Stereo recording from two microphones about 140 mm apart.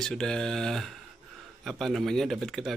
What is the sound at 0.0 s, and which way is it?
Speech, 5° left (ahead or behind).